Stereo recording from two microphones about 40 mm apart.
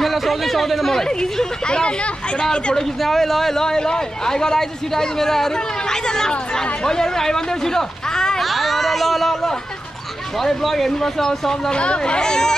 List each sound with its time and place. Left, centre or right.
0.0 s speech: centre
1.0 s speech: centre
2.7 s speech: centre
8.4 s speech: centre
11.7 s speech: left